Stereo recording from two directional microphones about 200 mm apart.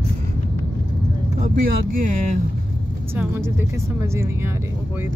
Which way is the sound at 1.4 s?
45° right (ahead or behind).